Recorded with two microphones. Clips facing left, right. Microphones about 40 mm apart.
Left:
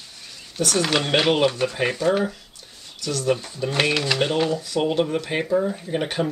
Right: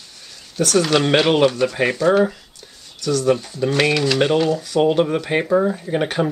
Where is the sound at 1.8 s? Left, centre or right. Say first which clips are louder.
Right 4 dB; centre.